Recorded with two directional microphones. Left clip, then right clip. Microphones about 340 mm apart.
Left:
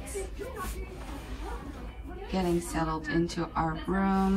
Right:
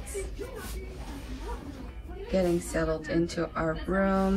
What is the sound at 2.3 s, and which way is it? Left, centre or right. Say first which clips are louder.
Speech: right 3 dB; centre.